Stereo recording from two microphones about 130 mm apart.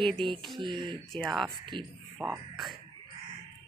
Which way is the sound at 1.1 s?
Centre (ahead or behind).